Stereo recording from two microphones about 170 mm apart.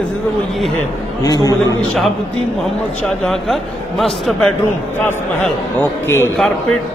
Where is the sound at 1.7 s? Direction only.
Centre (ahead or behind).